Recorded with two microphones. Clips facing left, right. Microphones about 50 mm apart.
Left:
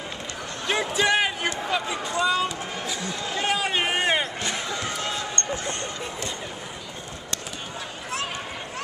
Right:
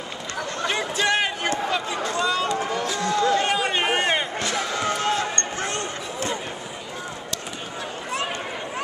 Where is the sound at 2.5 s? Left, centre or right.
Right.